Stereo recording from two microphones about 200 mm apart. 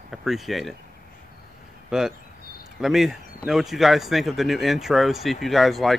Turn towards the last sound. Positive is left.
turn(degrees=0)  # may be behind; listen again after turning